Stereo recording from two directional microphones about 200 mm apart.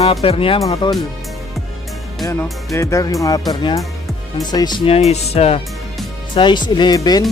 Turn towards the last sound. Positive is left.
turn(degrees=20)  # may be behind; listen again after turning